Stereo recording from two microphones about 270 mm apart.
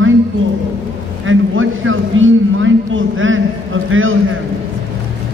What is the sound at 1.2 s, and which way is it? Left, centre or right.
A man's voice, right.